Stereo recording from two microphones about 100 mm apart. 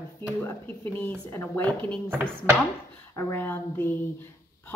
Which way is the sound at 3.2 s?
20° left (ahead or behind).